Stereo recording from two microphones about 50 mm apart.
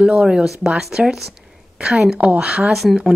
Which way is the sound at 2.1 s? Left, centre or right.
Right.